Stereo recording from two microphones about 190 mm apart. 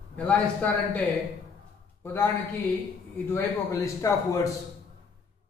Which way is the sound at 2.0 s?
10° left (ahead or behind).